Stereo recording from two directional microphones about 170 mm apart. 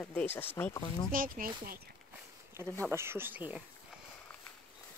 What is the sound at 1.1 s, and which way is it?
Speech, 55° right (ahead or behind).